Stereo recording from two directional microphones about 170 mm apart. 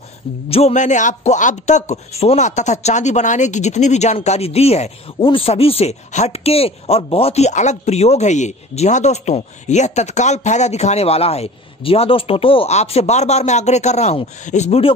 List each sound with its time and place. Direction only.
0.5 s speech: 35° left (ahead or behind)